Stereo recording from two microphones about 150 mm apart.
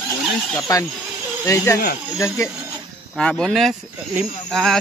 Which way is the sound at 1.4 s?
20° left (ahead or behind).